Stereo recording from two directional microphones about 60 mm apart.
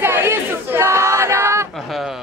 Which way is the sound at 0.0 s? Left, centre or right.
Right.